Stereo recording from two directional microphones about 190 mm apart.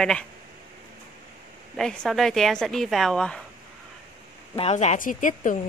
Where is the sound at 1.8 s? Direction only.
Centre (ahead or behind).